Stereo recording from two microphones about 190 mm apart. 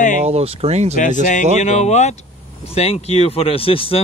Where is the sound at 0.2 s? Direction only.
30° right (ahead or behind).